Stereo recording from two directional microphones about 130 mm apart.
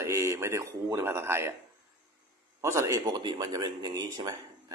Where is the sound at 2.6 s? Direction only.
25° right (ahead or behind).